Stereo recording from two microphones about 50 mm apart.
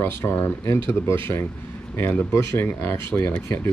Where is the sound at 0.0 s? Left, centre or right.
Left.